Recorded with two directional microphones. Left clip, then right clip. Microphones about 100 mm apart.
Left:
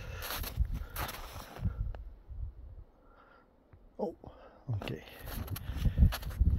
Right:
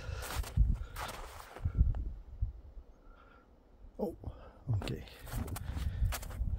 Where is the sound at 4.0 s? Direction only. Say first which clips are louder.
Left 1 dB; 55° right (ahead or behind).